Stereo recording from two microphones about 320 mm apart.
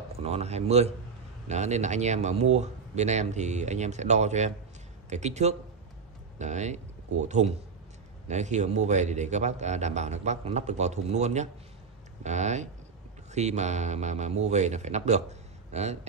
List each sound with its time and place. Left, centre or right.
0.2 s a man's voice: centre